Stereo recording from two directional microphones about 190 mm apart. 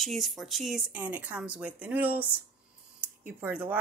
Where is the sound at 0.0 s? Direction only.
Centre (ahead or behind).